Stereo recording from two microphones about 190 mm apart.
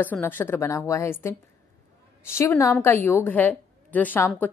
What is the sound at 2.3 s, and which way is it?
A woman's voice, 15° left (ahead or behind).